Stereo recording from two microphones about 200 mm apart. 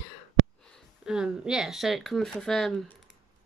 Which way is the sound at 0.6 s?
5° left (ahead or behind).